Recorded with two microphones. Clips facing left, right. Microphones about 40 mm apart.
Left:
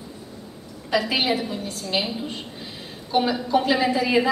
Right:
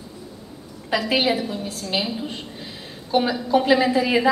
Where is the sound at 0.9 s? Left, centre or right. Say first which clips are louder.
Right 1 dB; centre.